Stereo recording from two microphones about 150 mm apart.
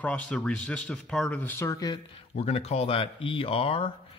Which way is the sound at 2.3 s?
45° left (ahead or behind).